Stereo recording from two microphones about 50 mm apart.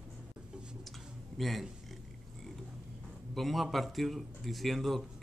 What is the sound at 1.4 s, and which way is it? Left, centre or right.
Speech, centre.